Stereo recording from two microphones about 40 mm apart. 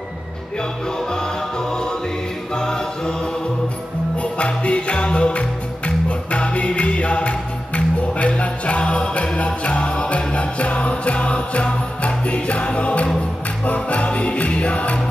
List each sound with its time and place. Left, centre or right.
2.5 s music: centre
4.2 s music: left